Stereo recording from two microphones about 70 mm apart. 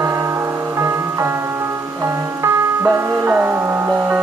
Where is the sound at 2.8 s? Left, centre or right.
Right.